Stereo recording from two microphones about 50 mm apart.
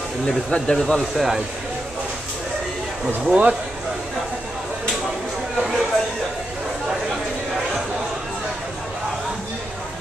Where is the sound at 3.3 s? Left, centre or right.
Right.